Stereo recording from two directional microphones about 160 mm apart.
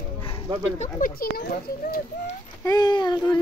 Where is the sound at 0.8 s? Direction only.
55° left (ahead or behind).